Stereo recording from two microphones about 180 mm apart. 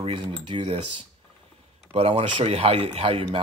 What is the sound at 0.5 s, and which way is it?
Cutlery, 30° right (ahead or behind).